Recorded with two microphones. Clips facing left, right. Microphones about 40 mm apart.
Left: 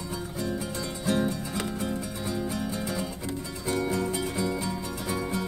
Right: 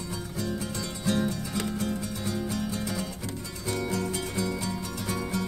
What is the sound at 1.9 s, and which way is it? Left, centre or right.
Music, centre.